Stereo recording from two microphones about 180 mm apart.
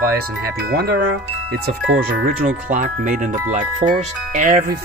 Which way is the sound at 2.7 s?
45° right (ahead or behind).